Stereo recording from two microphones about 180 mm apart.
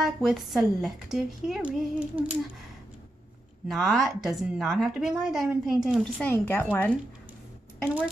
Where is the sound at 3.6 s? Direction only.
Centre (ahead or behind).